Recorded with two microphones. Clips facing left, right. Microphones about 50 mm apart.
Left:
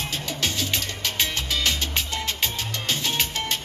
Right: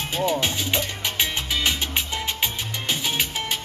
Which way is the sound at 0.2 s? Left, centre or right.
Right.